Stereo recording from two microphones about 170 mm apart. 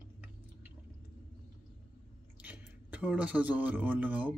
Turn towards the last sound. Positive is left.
turn(degrees=-10)  # may be behind; listen again after turning